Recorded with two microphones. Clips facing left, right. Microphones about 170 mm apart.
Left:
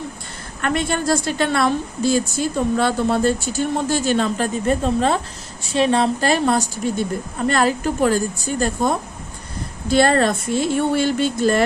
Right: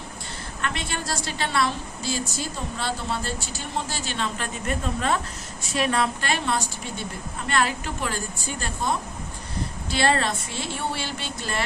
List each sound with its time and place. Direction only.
0.6 s a woman's voice: 50° left (ahead or behind)